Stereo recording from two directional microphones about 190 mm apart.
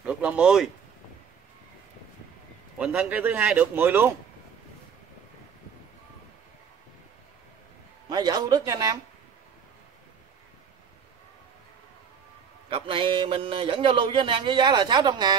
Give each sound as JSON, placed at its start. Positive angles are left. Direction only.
{"t": 0.0, "sound": "a sound", "side_deg": -5}
{"t": 2.8, "sound": "a man's voice", "side_deg": -5}
{"t": 8.1, "sound": "speech", "side_deg": -20}
{"t": 12.6, "sound": "speech", "side_deg": -25}